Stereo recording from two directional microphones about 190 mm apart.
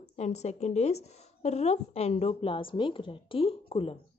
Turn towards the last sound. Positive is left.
turn(degrees=30)  # may be behind; listen again after turning